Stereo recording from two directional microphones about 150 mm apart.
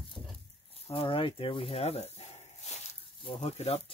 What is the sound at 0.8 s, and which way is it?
Speech, 35° left (ahead or behind).